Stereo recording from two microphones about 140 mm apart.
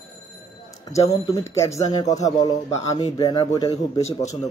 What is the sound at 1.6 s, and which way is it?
Speech, 25° left (ahead or behind).